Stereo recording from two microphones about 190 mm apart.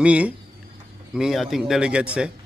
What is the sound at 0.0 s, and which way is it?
A man's voice, 5° right (ahead or behind).